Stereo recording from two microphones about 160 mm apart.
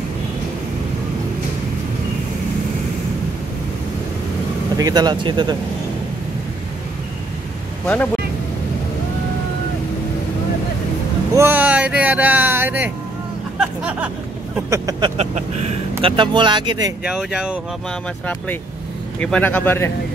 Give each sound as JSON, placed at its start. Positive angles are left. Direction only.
{"t": 4.7, "sound": "speech", "side_deg": -25}
{"t": 7.8, "sound": "speech", "side_deg": 10}
{"t": 11.3, "sound": "speech", "side_deg": -15}
{"t": 13.6, "sound": "a sound", "side_deg": -10}
{"t": 14.7, "sound": "speech", "side_deg": -25}
{"t": 17.0, "sound": "speech", "side_deg": -5}
{"t": 19.3, "sound": "speech", "side_deg": 10}